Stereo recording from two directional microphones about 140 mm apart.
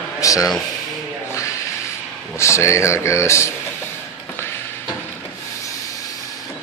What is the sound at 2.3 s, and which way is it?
Speech, 20° left (ahead or behind).